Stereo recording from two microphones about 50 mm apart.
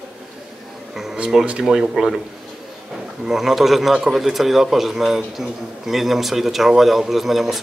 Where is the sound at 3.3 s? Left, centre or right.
Centre.